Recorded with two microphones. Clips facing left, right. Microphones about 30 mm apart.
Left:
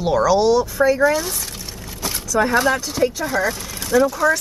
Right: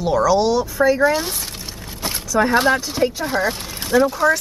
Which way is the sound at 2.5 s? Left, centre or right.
Right.